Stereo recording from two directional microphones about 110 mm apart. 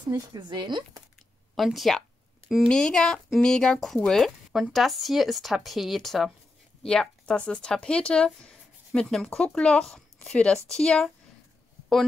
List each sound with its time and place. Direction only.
0.1 s speech: 40° right (ahead or behind)
1.5 s a sound: centre (ahead or behind)
2.7 s speech: 5° left (ahead or behind)